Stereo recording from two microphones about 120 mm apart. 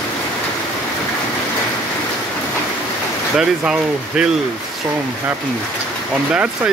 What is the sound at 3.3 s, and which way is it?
Speech, 5° right (ahead or behind).